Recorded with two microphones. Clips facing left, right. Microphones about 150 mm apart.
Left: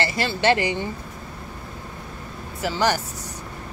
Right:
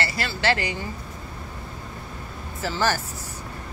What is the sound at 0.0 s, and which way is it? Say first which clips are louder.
Speech: left 4 dB; 25° left (ahead or behind).